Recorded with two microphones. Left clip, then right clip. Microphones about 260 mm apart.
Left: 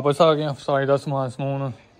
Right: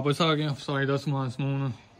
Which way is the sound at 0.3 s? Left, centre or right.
Right.